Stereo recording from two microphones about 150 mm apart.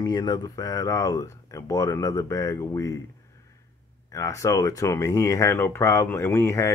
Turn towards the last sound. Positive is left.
turn(degrees=20)  # may be behind; listen again after turning